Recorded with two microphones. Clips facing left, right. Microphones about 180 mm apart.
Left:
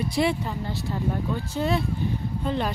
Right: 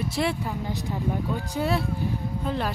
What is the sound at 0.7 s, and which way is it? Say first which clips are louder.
Speech: left 1 dB; 15° right (ahead or behind).